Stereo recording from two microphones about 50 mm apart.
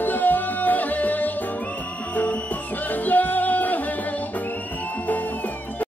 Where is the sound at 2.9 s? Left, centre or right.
Left.